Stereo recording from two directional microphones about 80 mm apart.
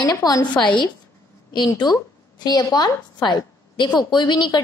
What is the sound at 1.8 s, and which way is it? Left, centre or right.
A woman's voice, left.